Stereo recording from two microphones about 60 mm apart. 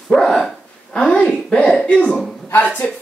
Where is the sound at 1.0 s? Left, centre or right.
Centre.